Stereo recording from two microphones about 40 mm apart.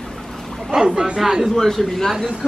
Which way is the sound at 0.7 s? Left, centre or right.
Centre.